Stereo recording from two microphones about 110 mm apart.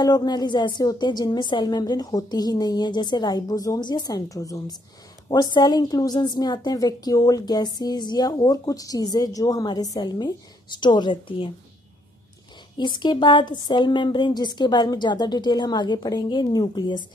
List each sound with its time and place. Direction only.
0.0 s a woman's voice: 40° left (ahead or behind)
12.7 s speech: 45° left (ahead or behind)